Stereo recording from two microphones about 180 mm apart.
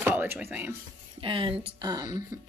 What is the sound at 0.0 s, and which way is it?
Speech, 10° right (ahead or behind).